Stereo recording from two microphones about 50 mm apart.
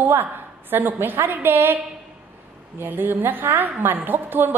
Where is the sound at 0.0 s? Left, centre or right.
Right.